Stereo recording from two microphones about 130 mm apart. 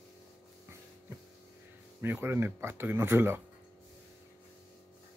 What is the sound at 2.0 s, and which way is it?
Speech, 15° right (ahead or behind).